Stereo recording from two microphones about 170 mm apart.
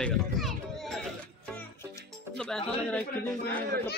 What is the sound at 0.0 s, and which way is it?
Children playing, centre (ahead or behind).